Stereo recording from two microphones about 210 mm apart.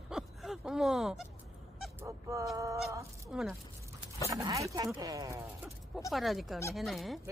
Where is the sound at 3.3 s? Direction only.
Centre (ahead or behind).